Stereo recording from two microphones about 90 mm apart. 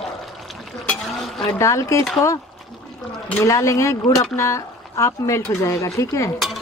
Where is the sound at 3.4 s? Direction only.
35° left (ahead or behind).